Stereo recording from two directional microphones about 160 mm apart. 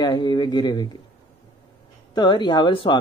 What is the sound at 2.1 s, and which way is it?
Speech, 30° left (ahead or behind).